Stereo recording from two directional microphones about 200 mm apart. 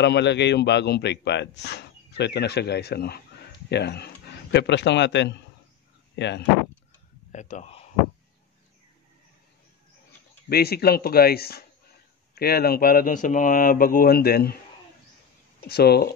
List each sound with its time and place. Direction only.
0.0 s a man's voice: 60° left (ahead or behind)
7.3 s speech: 35° left (ahead or behind)
10.5 s speech: 50° left (ahead or behind)
15.7 s speech: 55° left (ahead or behind)